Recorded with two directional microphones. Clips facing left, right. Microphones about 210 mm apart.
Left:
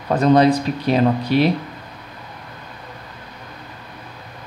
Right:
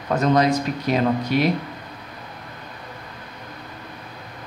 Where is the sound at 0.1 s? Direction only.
30° left (ahead or behind).